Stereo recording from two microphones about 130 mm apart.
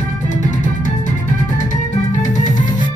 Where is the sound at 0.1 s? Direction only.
75° left (ahead or behind).